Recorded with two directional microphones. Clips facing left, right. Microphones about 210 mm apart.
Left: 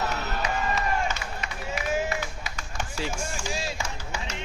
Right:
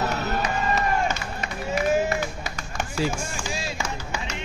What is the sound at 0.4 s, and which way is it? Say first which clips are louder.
Run: right 1 dB; 50° right (ahead or behind).